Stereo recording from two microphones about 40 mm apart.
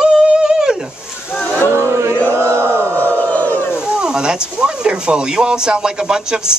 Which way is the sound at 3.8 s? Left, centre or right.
Right.